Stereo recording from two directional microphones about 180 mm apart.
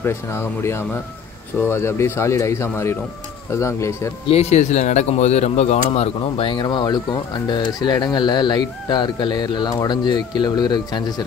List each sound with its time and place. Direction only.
0.0 s speech: 15° left (ahead or behind)
4.3 s speech: 35° left (ahead or behind); by 11.2 s 20° left (ahead or behind)